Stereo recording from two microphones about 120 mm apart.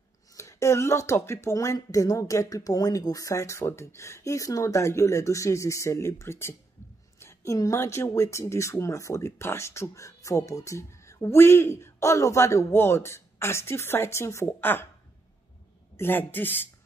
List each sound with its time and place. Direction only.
0.3 s speech: 25° left (ahead or behind)
16.0 s speech: 15° left (ahead or behind)